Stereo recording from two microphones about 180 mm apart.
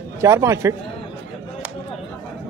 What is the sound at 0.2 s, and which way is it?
Speech, 15° right (ahead or behind).